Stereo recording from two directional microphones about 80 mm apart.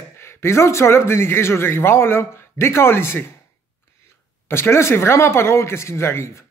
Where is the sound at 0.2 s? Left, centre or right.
Left.